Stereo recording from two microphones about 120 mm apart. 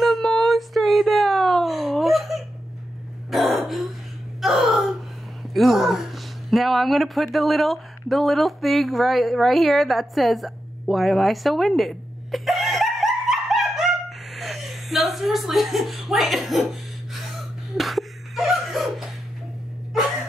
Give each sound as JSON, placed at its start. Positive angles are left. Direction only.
{"t": 0.0, "sound": "whimper", "side_deg": 0}
{"t": 3.3, "sound": "throat clearing", "side_deg": 0}
{"t": 4.4, "sound": "a sound", "side_deg": 0}
{"t": 17.1, "sound": "chuckle", "side_deg": 0}